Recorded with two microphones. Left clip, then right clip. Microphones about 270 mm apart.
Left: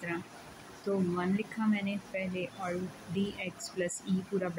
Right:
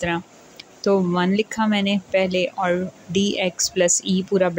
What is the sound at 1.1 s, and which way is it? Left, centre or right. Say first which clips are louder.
Speech: right 13 dB; right.